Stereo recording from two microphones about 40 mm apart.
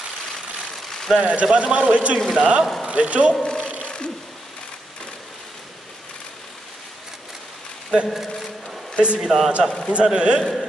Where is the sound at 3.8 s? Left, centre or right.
Left.